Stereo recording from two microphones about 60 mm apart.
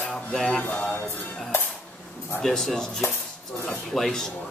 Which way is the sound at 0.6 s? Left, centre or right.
Left.